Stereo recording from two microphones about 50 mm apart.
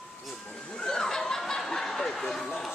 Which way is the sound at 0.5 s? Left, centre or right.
Left.